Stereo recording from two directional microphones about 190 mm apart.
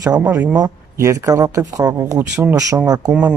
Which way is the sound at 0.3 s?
10° right (ahead or behind).